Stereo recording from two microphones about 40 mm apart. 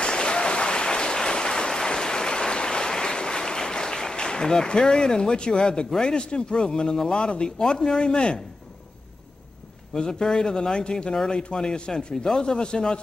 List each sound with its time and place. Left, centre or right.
0.0 s applause: left
5.9 s a man's voice: centre
9.9 s a man's voice: centre